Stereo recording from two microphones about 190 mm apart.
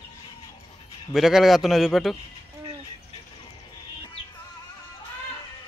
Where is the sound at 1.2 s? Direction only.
Centre (ahead or behind).